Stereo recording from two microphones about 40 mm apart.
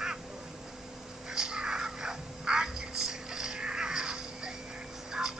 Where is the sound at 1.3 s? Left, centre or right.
Centre.